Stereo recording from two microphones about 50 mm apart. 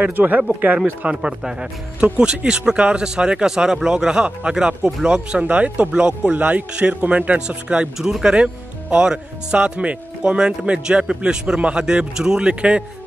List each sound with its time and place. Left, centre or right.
0.0 s speech: right